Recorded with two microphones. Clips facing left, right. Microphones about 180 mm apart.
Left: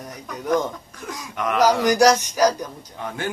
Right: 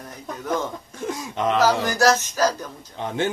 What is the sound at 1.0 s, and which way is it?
Speech, 25° right (ahead or behind).